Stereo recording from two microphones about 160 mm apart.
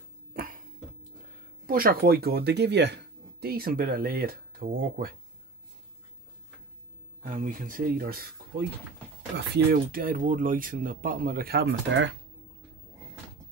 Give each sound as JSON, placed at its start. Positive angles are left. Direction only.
{"t": 1.7, "sound": "speech", "side_deg": -65}
{"t": 7.2, "sound": "speech", "side_deg": -55}
{"t": 9.7, "sound": "speech", "side_deg": -60}